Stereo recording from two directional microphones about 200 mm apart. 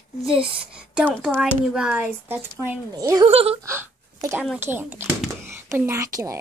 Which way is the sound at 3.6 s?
15° right (ahead or behind).